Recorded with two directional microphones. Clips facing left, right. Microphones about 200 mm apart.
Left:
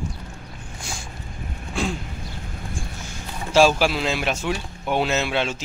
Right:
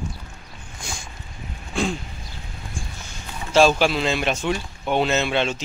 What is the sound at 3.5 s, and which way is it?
Speech, 5° left (ahead or behind).